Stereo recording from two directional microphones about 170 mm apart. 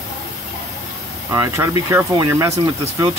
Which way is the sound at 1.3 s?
15° right (ahead or behind).